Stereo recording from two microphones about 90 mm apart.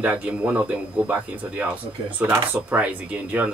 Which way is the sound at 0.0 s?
15° right (ahead or behind).